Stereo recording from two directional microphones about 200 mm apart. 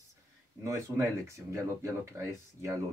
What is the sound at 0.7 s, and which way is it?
Speech, 15° right (ahead or behind).